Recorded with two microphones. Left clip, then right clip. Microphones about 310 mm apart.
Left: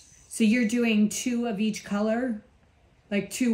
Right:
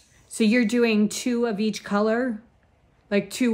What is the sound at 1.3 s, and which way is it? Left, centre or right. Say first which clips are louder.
Speech: right 5 dB; right.